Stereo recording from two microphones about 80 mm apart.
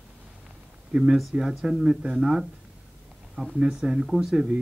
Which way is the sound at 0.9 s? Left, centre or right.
Centre.